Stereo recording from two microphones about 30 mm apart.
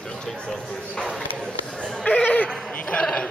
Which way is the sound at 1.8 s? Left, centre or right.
Left.